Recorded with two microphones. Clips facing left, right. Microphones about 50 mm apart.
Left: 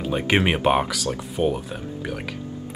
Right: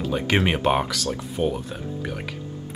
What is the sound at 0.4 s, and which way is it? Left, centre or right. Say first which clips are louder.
Speech: left 2 dB; centre.